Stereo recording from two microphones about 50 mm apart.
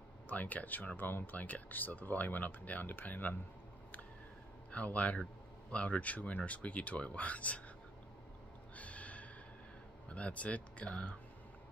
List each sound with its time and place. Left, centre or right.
0.3 s speech: left
4.6 s speech: left
8.7 s a sound: left
10.0 s speech: left